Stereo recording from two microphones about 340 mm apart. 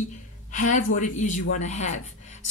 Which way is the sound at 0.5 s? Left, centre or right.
Left.